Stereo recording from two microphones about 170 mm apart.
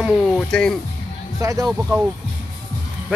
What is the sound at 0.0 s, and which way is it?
Speech, 5° left (ahead or behind).